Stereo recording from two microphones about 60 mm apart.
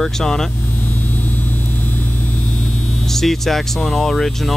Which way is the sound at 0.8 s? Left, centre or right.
Left.